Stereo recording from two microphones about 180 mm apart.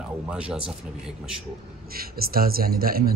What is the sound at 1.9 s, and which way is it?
Speech, 55° right (ahead or behind).